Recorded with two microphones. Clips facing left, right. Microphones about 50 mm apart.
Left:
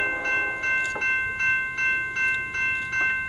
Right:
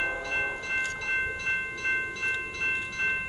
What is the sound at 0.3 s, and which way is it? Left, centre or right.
Train, left.